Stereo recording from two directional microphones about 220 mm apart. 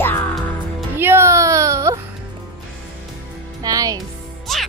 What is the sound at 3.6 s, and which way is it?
Music, 15° right (ahead or behind).